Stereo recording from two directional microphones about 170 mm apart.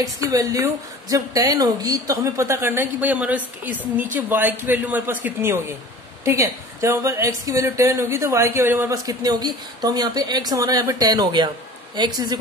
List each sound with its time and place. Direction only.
0.0 s a woman's voice: 20° right (ahead or behind)